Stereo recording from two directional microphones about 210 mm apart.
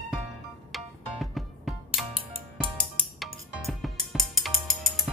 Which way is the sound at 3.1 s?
Centre (ahead or behind).